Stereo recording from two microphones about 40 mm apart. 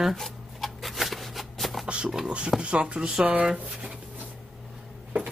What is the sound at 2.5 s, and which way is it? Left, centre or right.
Speech, right.